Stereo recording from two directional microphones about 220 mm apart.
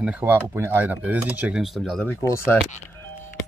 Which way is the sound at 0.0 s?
5° right (ahead or behind).